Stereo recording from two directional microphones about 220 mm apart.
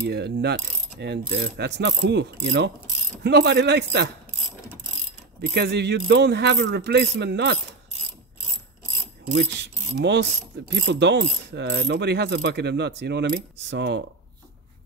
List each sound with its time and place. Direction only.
0.0 s pulleys: 50° right (ahead or behind)
5.4 s pulleys: 50° right (ahead or behind)
9.3 s mechanisms: 50° right (ahead or behind)
10.7 s pulleys: 50° right (ahead or behind)